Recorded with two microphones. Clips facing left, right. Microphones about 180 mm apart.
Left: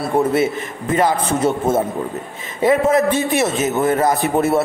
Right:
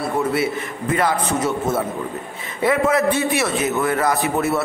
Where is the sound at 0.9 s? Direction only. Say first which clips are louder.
Left 3 dB; 25° left (ahead or behind).